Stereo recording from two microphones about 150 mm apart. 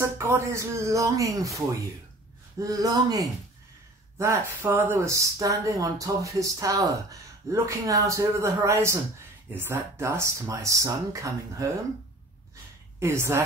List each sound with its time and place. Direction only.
0.0 s speech: 15° right (ahead or behind)
2.6 s speech: 25° right (ahead or behind)
13.0 s a woman's voice: 15° right (ahead or behind)